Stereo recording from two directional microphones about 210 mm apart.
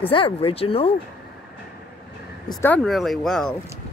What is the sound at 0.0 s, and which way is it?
Speech, 25° left (ahead or behind).